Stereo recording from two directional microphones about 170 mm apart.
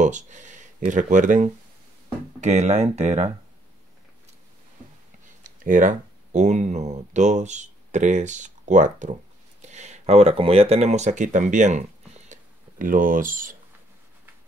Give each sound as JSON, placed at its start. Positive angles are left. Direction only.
{"t": 0.0, "sound": "speech", "side_deg": -45}
{"t": 5.4, "sound": "speech", "side_deg": -50}
{"t": 12.3, "sound": "a sound", "side_deg": -55}